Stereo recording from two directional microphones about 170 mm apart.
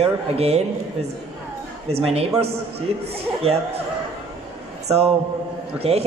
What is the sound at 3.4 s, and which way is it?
Speech, 35° right (ahead or behind).